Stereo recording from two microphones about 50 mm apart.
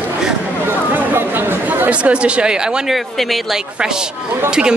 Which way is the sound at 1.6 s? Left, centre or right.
Right.